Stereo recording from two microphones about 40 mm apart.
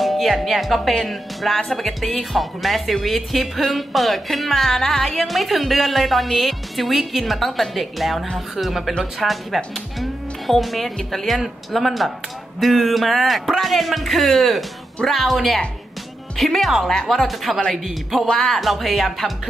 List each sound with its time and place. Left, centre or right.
0.0 s speech: centre
16.8 s speech: centre
17.1 s speech: centre